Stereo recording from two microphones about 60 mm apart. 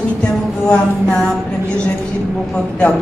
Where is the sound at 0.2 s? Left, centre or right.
Centre.